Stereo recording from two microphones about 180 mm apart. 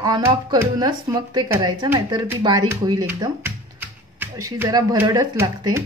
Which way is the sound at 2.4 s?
20° right (ahead or behind).